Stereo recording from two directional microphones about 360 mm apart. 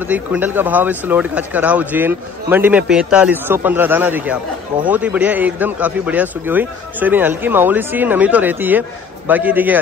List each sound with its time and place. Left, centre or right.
0.1 s speech: centre